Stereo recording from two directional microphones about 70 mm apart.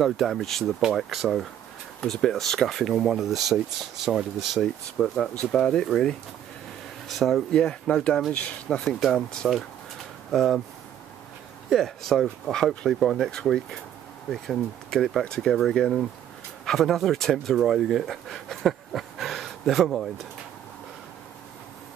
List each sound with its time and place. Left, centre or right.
0.0 s speech: centre
4.9 s speech: centre
7.5 s speech: centre
8.8 s speech: centre
11.7 s speech: centre